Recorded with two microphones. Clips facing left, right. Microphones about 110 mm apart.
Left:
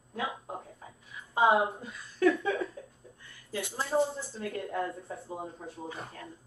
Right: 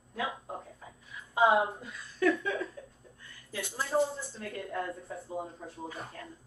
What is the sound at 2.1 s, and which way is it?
Laughter, 30° left (ahead or behind).